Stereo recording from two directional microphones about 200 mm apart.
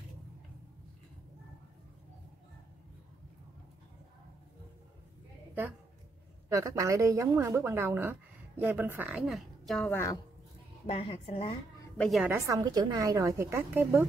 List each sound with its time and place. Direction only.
5.5 s a woman's voice: 10° right (ahead or behind); by 10.1 s 10° left (ahead or behind)
10.9 s a woman's voice: 30° left (ahead or behind)
12.0 s a woman's voice: centre (ahead or behind)
12.4 s a woman's voice: 15° right (ahead or behind)